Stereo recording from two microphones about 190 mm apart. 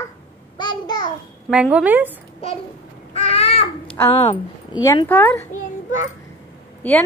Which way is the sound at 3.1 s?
30° left (ahead or behind).